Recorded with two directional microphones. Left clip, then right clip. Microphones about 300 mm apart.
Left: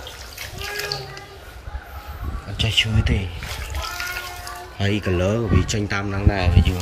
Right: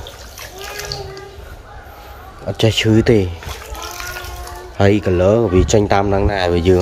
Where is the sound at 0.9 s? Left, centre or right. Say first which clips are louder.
Right 2 dB; right.